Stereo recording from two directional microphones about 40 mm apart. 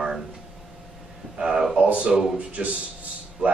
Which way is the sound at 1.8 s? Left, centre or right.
Right.